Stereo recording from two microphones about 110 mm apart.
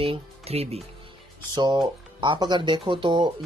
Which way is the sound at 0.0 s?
65° right (ahead or behind).